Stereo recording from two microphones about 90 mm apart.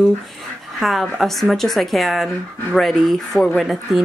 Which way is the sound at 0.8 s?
Centre (ahead or behind).